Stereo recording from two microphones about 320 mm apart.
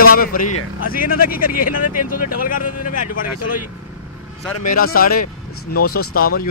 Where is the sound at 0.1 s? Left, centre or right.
Left.